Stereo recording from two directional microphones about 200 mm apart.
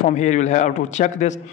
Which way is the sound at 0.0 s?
35° left (ahead or behind).